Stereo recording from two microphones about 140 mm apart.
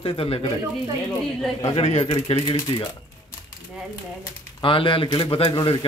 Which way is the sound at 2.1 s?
40° left (ahead or behind).